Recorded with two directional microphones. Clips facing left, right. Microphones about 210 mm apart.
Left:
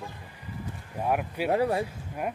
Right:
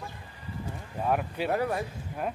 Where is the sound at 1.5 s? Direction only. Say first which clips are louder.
Left 4 dB; 30° left (ahead or behind).